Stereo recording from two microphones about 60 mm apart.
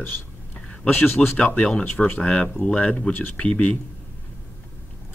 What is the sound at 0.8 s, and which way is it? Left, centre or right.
Speech, left.